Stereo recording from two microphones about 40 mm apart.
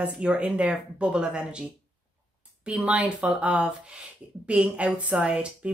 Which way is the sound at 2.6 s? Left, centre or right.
Right.